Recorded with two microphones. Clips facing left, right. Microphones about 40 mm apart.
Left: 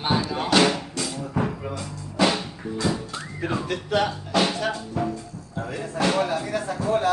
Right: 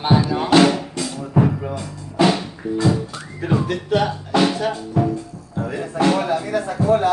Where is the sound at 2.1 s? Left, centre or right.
Centre.